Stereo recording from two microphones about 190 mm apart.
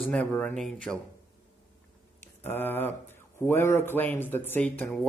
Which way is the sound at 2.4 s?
10° left (ahead or behind).